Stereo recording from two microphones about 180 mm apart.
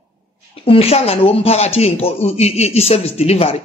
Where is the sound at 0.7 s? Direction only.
35° left (ahead or behind).